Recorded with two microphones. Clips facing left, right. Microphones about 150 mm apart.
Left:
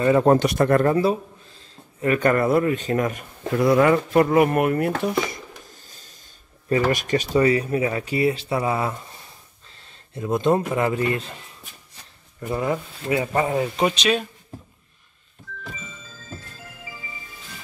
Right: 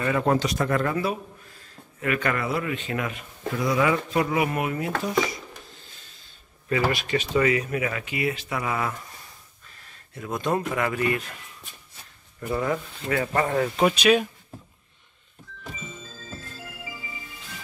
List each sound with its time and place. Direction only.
0.4 s speech: 60° left (ahead or behind)
0.8 s a sound: 30° left (ahead or behind)
2.1 s speech: 45° left (ahead or behind)
3.5 s speech: 55° left (ahead or behind)
5.3 s a sound: 40° left (ahead or behind)
6.7 s speech: 45° left (ahead or behind); by 13.7 s 20° left (ahead or behind)
13.7 s speech: 5° right (ahead or behind)